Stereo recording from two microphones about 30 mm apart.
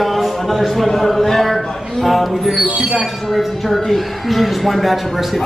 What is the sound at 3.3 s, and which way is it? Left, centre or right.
A man's voice, centre.